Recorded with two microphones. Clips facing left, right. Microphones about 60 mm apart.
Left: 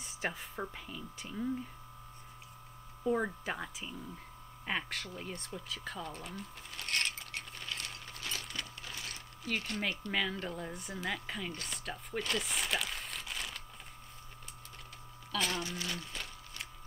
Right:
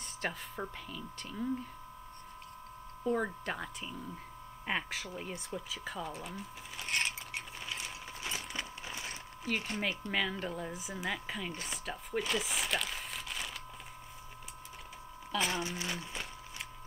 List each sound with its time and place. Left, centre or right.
0.2 s speech: centre
3.0 s speech: centre
4.6 s a sound: centre; by 9.7 s right
9.7 s speech: centre
15.3 s speech: centre
15.6 s a sound: centre